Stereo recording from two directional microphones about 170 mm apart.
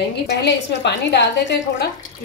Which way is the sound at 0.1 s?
85° left.